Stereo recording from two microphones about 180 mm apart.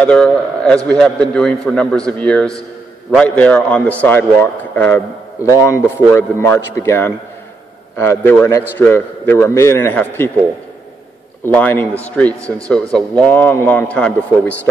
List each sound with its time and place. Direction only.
0.0 s a man's voice: 5° left (ahead or behind)
11.4 s a man's voice: 10° left (ahead or behind)
12.4 s speech: 15° right (ahead or behind)
12.6 s a man's voice: 5° left (ahead or behind)